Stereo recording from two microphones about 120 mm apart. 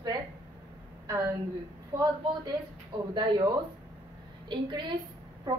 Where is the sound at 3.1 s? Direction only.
40° right (ahead or behind).